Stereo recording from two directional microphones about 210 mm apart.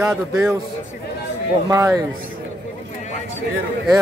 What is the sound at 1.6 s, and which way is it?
Speech, 15° right (ahead or behind).